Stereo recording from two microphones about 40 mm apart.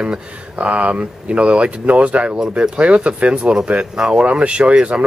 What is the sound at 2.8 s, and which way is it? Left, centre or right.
Speech, right.